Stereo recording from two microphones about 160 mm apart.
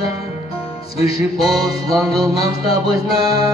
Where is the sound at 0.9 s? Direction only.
40° left (ahead or behind).